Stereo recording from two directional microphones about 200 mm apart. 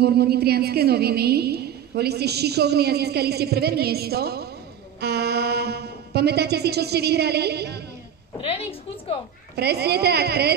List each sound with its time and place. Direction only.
0.0 s a woman's voice: 50° right (ahead or behind)
8.4 s a woman's voice: 30° left (ahead or behind)
9.6 s a woman's voice: 55° right (ahead or behind)